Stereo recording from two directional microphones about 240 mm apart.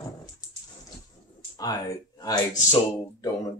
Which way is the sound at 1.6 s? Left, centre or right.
Centre.